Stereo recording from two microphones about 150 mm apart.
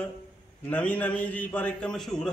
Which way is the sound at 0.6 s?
10° left (ahead or behind).